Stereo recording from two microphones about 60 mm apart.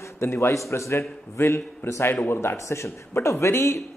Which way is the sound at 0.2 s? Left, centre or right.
Left.